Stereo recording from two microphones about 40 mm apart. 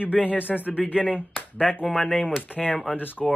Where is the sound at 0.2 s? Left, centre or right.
Left.